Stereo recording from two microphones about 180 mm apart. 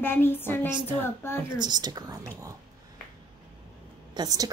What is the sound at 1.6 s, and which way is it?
Speech, 25° right (ahead or behind).